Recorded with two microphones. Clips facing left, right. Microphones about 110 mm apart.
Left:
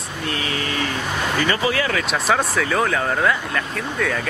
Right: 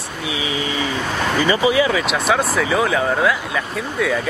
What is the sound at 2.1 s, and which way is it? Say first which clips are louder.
Speech: right 2 dB; centre (ahead or behind).